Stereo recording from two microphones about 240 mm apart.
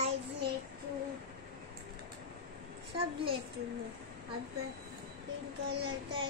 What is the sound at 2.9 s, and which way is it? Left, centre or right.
Speech, right.